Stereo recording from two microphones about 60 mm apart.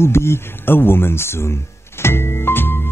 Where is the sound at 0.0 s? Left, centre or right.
Left.